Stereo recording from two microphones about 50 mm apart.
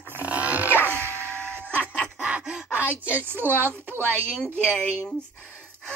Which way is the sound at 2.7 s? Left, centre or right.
Right.